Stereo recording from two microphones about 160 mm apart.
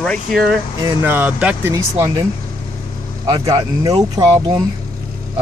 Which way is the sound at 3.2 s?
25° right (ahead or behind).